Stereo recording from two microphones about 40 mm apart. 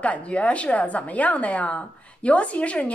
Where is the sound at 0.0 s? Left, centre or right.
Left.